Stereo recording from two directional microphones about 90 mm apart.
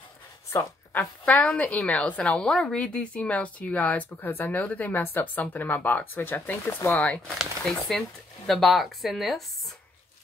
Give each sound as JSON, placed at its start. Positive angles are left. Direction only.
{"t": 0.9, "sound": "a woman's voice", "side_deg": 15}